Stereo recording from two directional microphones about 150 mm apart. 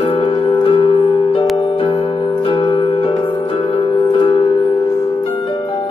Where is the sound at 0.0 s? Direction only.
35° left (ahead or behind).